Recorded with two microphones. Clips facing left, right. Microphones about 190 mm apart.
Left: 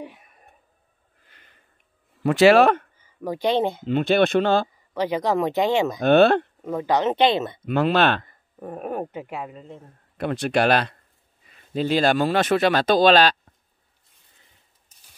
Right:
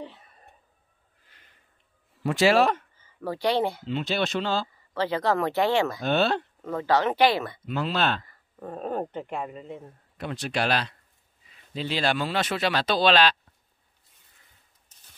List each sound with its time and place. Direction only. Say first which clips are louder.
0.0 s whispering: left 2 dB; 10° left (ahead or behind)
2.2 s speech: left 6 dB; 65° left (ahead or behind)
3.0 s speech: left 3 dB; 15° left (ahead or behind)
3.8 s speech: left 8 dB; 55° left (ahead or behind)
4.9 s speech: left 3 dB; 15° left (ahead or behind)
6.0 s speech: left 13 dB; 60° left (ahead or behind)
6.6 s speech: left 2 dB; 15° left (ahead or behind)
7.6 s speech: left 8 dB; 60° left (ahead or behind)
8.3 s speech: left 3 dB; 15° left (ahead or behind); by 9.8 s centre (ahead or behind)
10.1 s speech: left 8 dB; 55° left (ahead or behind)